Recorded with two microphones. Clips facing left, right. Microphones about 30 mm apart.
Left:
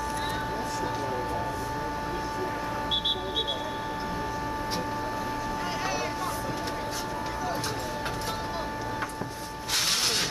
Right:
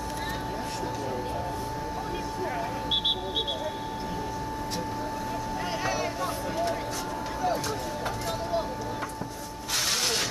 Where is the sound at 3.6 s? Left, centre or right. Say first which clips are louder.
Left 1 dB; centre.